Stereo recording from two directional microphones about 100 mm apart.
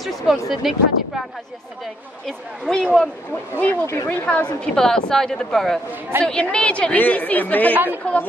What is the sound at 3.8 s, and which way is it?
Speech, 30° left (ahead or behind).